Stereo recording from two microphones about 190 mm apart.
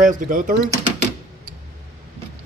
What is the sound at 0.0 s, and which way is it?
Speech, 45° right (ahead or behind).